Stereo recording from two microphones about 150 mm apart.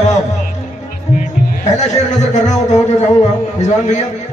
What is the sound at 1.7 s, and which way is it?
Speech, 50° left (ahead or behind).